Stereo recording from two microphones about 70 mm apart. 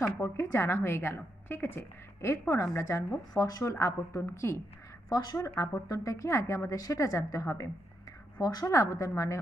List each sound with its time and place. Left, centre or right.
0.0 s a woman's voice: left
3.7 s a woman's voice: left
5.1 s speech: left
5.6 s a woman's voice: left
8.4 s a woman's voice: left